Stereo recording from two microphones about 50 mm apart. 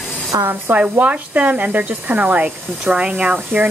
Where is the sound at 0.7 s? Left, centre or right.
Right.